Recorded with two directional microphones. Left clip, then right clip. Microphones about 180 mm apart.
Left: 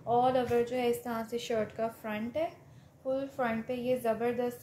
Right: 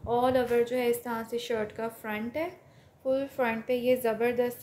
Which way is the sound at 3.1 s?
55° right (ahead or behind).